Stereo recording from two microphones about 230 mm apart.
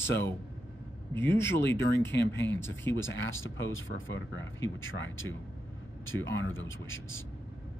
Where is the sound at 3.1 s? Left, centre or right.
Left.